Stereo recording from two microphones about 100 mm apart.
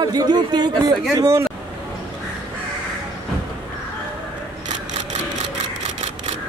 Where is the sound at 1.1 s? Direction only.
35° right (ahead or behind).